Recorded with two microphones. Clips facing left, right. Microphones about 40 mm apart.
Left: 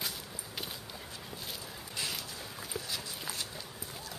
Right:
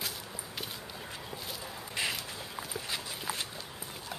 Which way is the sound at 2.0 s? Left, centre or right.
Right.